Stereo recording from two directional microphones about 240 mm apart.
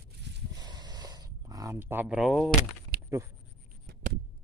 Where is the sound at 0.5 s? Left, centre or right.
Centre.